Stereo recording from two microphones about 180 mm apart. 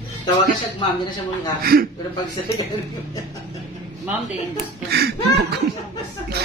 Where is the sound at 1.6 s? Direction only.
55° right (ahead or behind).